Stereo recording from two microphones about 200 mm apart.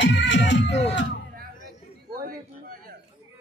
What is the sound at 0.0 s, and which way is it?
Music, 65° left (ahead or behind).